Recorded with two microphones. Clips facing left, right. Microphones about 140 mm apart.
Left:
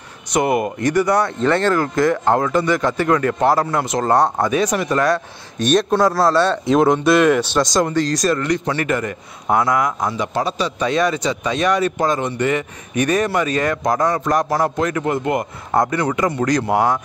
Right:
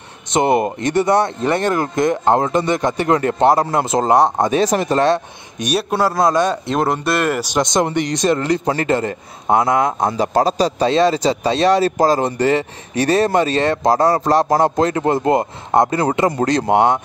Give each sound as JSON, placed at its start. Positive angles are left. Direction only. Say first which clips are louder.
{"t": 0.3, "sound": "speech", "louder": "right 2 dB", "side_deg": -25}
{"t": 4.5, "sound": "speech", "louder": "right 2 dB", "side_deg": -30}
{"t": 5.6, "sound": "a man's voice", "louder": "left 3 dB", "side_deg": -10}
{"t": 6.6, "sound": "speech", "louder": "left 4 dB", "side_deg": 0}